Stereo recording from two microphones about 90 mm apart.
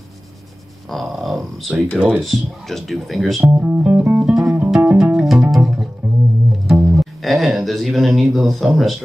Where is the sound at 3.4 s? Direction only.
15° right (ahead or behind).